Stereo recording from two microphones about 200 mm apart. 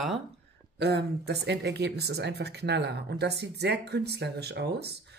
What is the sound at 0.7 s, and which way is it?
Speech, 55° right (ahead or behind).